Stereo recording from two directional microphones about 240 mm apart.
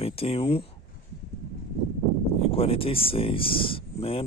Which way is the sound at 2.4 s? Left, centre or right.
Left.